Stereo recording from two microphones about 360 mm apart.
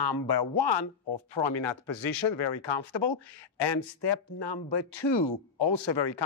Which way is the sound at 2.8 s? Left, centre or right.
Left.